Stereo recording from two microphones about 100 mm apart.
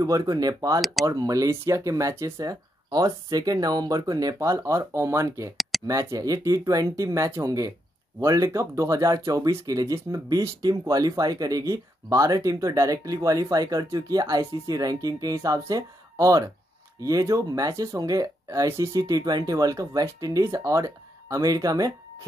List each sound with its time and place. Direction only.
0.0 s speech: 35° right (ahead or behind)
0.7 s speech: centre (ahead or behind)
1.0 s speech: 35° right (ahead or behind)
5.6 s a sound: centre (ahead or behind)
5.9 s speech: 30° right (ahead or behind)